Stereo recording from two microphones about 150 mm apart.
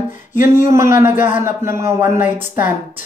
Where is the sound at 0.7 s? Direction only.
20° right (ahead or behind).